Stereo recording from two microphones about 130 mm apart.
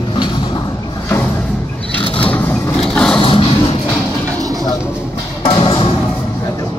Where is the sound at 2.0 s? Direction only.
45° left (ahead or behind).